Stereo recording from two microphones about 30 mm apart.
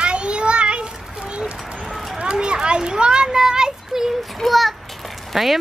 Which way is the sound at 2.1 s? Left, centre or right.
Right.